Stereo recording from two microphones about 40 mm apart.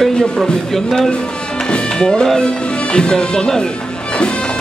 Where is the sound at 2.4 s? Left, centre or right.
Left.